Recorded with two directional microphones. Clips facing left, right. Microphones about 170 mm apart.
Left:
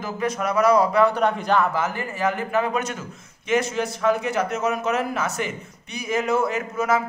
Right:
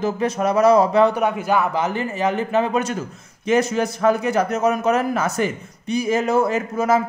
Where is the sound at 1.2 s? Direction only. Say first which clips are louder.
Right 1 dB; 10° right (ahead or behind); by 2.9 s 30° right (ahead or behind).